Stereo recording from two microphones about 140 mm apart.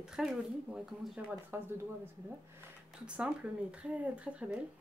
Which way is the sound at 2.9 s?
10° right (ahead or behind).